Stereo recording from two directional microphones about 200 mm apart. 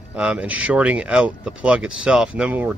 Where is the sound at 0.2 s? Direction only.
5° right (ahead or behind).